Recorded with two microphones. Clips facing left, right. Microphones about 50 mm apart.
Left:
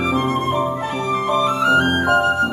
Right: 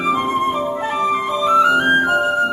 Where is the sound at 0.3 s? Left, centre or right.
Right.